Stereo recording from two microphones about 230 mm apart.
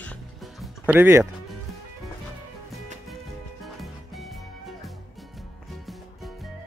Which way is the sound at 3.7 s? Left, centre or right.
Centre.